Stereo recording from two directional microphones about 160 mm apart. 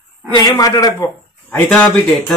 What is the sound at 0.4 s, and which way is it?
Speech, 20° left (ahead or behind).